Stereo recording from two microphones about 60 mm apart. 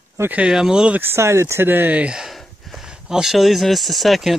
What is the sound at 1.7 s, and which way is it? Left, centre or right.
Speech, right.